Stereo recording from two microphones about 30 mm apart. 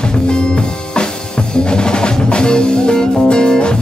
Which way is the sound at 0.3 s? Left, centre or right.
Left.